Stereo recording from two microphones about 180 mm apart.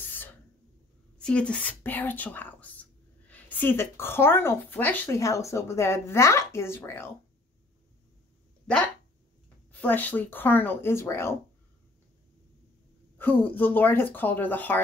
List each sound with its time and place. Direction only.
0.1 s a sound: 10° left (ahead or behind)
1.1 s speech: 5° left (ahead or behind)
9.7 s speech: 10° left (ahead or behind)
13.2 s speech: 10° left (ahead or behind)